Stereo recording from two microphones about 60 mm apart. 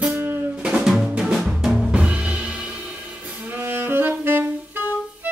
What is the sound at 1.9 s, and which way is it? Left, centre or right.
Music, right.